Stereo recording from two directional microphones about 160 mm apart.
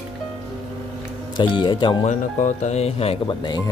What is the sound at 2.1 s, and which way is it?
Speech, 50° left (ahead or behind).